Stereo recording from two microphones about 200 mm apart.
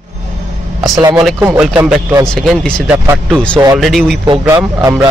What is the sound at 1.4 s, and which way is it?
Speech, 5° right (ahead or behind).